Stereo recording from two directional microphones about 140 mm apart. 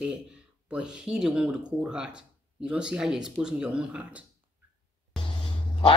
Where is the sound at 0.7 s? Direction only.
5° right (ahead or behind).